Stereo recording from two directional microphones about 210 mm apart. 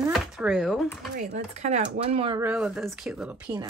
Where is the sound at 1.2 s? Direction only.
35° right (ahead or behind).